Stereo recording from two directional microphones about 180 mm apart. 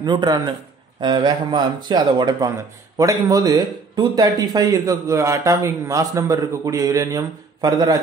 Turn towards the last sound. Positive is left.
turn(degrees=-20)  # may be behind; listen again after turning